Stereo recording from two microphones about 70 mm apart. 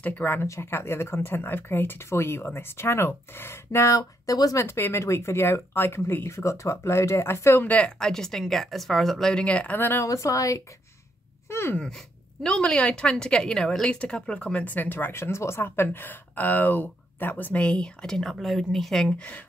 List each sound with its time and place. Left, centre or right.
0.0 s speech: left
4.6 s speech: left
7.6 s speech: left
8.0 s a woman's voice: centre
9.8 s speech: left
10.0 s a woman's voice: left
11.4 s wail: left
12.4 s a woman's voice: centre
19.1 s speech: centre